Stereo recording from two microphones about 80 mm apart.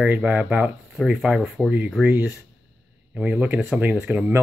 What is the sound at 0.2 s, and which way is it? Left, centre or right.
Speech, centre.